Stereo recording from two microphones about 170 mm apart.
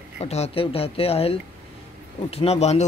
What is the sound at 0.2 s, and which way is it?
Speech, 35° left (ahead or behind).